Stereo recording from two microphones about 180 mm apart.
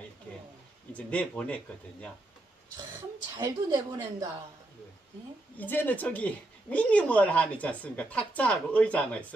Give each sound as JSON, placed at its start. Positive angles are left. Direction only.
{"t": 0.9, "sound": "speech", "side_deg": 5}
{"t": 3.3, "sound": "speech", "side_deg": -20}
{"t": 5.6, "sound": "speech", "side_deg": 10}